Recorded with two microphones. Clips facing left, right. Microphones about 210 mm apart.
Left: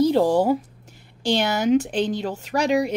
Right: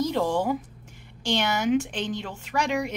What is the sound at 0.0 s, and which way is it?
A woman's voice, 35° left (ahead or behind).